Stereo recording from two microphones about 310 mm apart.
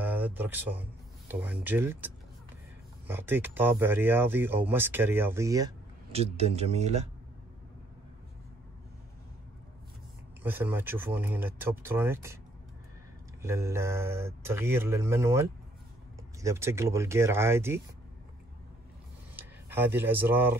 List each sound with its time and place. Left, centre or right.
0.0 s speech: centre; by 7.1 s right
10.4 s speech: centre
13.4 s speech: centre
19.3 s speech: centre